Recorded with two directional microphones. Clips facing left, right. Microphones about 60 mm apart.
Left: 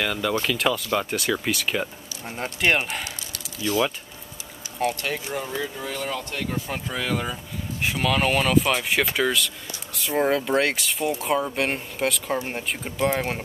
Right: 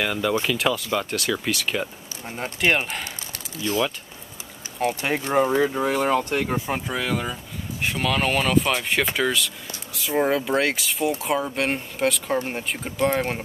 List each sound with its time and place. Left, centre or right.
0.0 s speech: centre
3.6 s speech: centre
4.8 s speech: centre
5.3 s speech: right
6.9 s speech: centre